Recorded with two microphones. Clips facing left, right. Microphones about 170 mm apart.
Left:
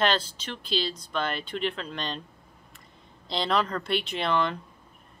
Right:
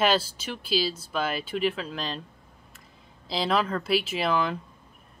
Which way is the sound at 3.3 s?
5° right (ahead or behind).